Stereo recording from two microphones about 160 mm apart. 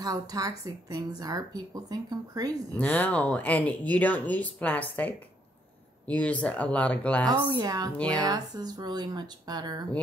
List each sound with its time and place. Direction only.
0.0 s speech: 20° right (ahead or behind)
2.8 s speech: 10° left (ahead or behind)
7.6 s speech: 25° right (ahead or behind)